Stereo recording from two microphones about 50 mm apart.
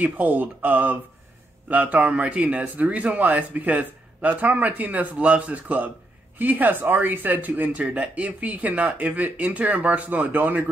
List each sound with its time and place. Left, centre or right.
0.0 s speech: right